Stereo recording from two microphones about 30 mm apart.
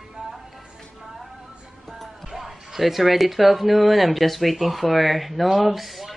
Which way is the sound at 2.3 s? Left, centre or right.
Centre.